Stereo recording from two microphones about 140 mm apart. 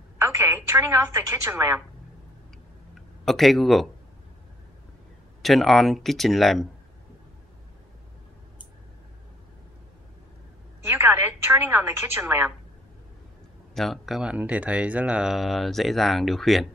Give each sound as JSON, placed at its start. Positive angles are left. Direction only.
{"t": 0.2, "sound": "a woman's voice", "side_deg": -20}
{"t": 2.9, "sound": "speech", "side_deg": 0}
{"t": 5.4, "sound": "speech", "side_deg": 0}
{"t": 10.9, "sound": "a woman's voice", "side_deg": -15}
{"t": 13.7, "sound": "speech", "side_deg": 0}